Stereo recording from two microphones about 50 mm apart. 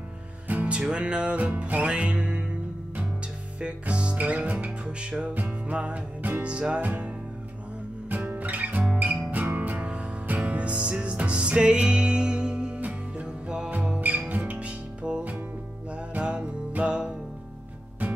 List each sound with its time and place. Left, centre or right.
0.5 s music: right
3.6 s music: right
8.3 s music: right
14.3 s music: right